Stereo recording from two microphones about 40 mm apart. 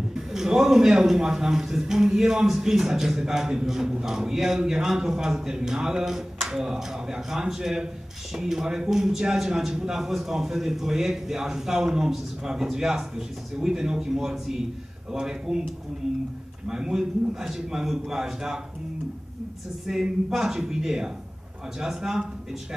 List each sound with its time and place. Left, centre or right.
0.1 s a man's voice: centre
16.6 s a man's voice: centre
19.9 s a man's voice: centre